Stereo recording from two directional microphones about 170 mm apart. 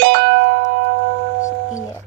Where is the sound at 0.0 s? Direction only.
75° right (ahead or behind).